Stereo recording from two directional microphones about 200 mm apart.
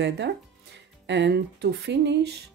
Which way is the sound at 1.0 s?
60° right (ahead or behind).